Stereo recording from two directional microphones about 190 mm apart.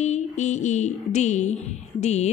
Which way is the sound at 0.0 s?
40° left (ahead or behind).